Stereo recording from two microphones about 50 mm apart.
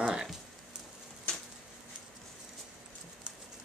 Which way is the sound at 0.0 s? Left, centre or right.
Centre.